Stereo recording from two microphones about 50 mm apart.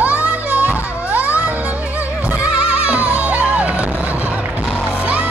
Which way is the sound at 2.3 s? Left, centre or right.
Right.